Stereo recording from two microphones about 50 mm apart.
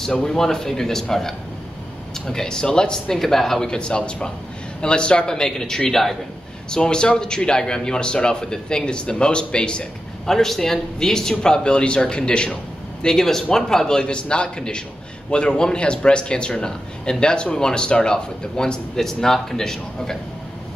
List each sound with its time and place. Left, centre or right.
0.1 s a man's voice: centre
10.2 s a man's voice: centre